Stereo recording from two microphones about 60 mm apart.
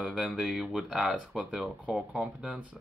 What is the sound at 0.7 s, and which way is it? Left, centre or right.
Speech, centre.